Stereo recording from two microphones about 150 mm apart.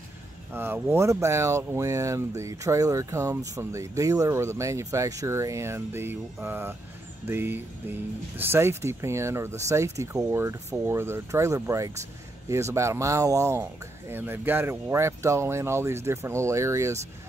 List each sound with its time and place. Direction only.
0.5 s speech: 15° right (ahead or behind)